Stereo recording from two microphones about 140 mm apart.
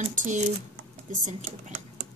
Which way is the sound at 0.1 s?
65° right (ahead or behind).